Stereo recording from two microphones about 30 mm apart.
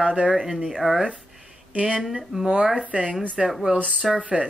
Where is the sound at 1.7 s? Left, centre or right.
Right.